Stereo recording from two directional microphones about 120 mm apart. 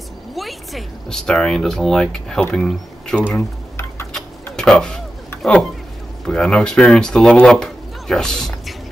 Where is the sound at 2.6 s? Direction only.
5° left (ahead or behind).